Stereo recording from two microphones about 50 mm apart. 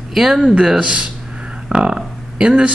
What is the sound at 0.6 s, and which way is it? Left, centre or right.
Speech, centre.